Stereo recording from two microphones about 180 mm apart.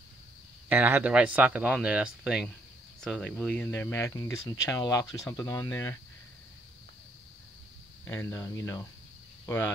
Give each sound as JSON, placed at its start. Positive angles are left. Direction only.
{"t": 0.7, "sound": "speech", "side_deg": -10}
{"t": 8.1, "sound": "speech", "side_deg": 15}